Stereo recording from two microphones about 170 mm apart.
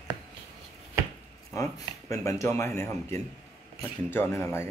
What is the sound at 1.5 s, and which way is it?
Speech, 20° left (ahead or behind).